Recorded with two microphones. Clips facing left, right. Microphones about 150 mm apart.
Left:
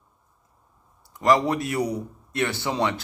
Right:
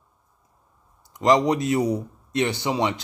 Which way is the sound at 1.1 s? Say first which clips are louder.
Right 2 dB; 20° right (ahead or behind).